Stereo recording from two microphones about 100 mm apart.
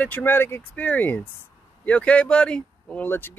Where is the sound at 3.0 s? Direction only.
25° left (ahead or behind).